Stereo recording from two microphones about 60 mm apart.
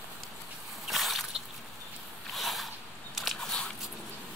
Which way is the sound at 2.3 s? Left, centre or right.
Centre.